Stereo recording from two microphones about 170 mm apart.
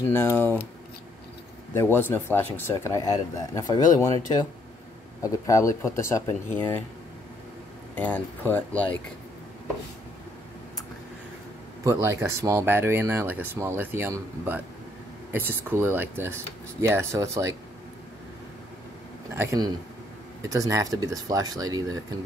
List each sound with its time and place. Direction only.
0.0 s speech: 15° left (ahead or behind)
1.8 s speech: 10° left (ahead or behind)
5.2 s speech: 20° left (ahead or behind)
7.9 s speech: 10° left (ahead or behind)
11.8 s speech: 20° right (ahead or behind)
19.3 s speech: 15° right (ahead or behind)